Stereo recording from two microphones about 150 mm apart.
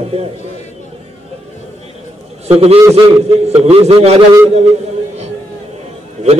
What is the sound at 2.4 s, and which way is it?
A man's voice, 45° right (ahead or behind).